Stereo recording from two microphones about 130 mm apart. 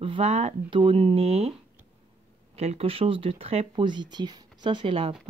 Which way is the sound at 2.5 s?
55° right (ahead or behind).